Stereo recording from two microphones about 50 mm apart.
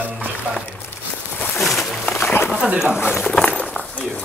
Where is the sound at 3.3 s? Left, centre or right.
Left.